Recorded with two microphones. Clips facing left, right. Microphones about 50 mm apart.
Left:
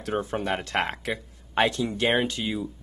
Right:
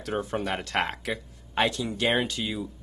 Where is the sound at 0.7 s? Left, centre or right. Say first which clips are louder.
Right 1 dB; centre.